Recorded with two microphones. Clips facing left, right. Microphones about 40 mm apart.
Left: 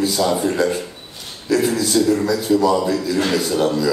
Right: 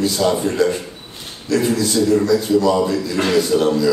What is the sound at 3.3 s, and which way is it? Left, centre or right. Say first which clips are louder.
Speech: right 3 dB; centre.